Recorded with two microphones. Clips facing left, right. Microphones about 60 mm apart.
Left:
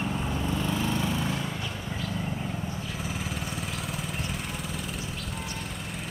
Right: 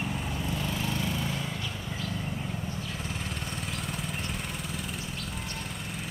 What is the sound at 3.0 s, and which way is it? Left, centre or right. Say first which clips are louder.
Vehicle: left 2 dB; centre.